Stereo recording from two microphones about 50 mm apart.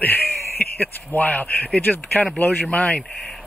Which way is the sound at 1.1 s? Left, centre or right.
Left.